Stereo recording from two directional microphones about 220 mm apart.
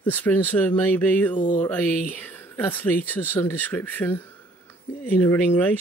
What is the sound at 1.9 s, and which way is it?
Speech, 40° left (ahead or behind).